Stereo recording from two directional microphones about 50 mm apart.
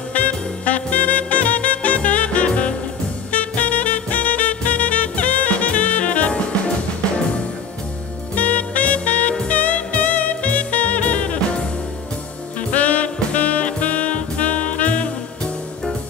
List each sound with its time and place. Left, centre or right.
0.1 s music: left
8.4 s music: left
12.7 s music: left